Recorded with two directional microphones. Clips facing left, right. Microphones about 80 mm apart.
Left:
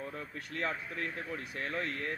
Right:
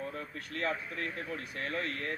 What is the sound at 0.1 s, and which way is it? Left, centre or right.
Speech, left.